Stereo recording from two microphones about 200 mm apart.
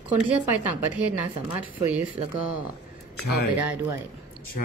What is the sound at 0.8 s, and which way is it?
Speech, 10° right (ahead or behind).